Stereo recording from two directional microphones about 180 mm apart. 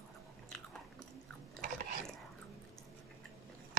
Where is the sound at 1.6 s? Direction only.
45° right (ahead or behind).